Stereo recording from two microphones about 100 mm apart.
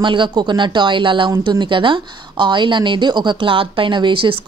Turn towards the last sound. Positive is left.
turn(degrees=-60)  # may be behind; listen again after turning